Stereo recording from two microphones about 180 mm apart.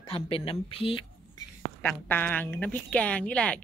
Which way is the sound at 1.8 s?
10° left (ahead or behind).